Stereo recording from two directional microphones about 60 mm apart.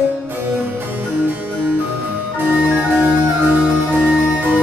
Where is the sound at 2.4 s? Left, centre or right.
Right.